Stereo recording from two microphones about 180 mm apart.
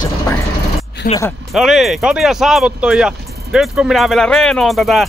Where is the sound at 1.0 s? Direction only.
55° left (ahead or behind).